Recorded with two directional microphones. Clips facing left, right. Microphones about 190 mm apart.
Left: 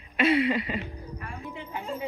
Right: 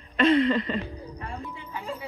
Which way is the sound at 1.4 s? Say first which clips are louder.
Left 1 dB; 15° left (ahead or behind).